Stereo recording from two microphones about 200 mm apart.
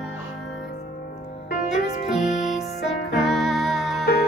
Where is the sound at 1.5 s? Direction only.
40° left (ahead or behind).